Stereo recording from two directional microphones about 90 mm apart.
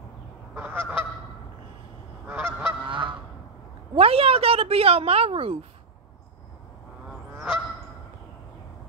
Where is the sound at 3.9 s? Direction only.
90° right.